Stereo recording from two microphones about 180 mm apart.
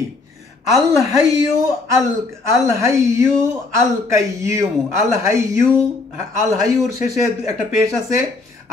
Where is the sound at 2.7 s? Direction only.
15° right (ahead or behind).